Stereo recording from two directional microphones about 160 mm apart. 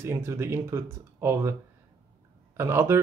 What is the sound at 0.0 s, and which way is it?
Speech, 15° right (ahead or behind).